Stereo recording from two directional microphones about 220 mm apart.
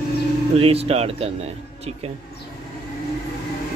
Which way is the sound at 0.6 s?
25° right (ahead or behind).